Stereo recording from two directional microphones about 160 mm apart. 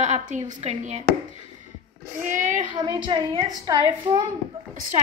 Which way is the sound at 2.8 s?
25° right (ahead or behind).